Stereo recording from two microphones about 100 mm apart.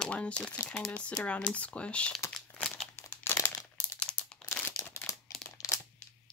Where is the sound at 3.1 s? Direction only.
25° left (ahead or behind).